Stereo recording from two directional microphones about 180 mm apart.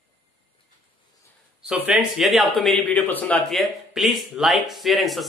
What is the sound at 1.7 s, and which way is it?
Speech, 5° right (ahead or behind).